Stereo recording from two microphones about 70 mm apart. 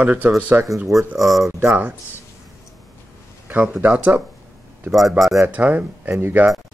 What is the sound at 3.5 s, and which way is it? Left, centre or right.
Speech, right.